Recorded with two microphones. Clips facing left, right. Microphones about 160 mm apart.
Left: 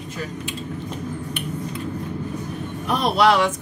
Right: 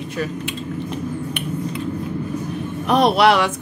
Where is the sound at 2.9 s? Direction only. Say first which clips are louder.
Right 4 dB; 70° right (ahead or behind).